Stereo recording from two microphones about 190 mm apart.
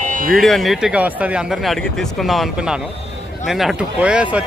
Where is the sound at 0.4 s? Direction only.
Centre (ahead or behind).